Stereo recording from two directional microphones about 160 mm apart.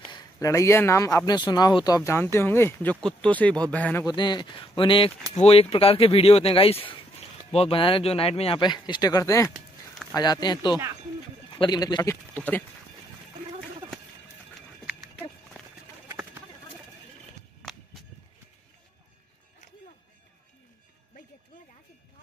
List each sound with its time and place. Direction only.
0.1 s speech: 20° left (ahead or behind)
4.0 s speech: 25° left (ahead or behind)
12.4 s speech: 10° left (ahead or behind)